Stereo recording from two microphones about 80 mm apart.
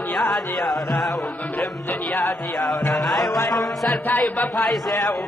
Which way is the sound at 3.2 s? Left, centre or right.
Left.